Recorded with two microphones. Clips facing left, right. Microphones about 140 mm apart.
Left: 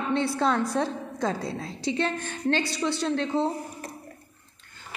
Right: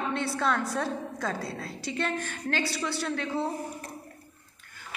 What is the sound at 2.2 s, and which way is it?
A woman's voice, 25° left (ahead or behind).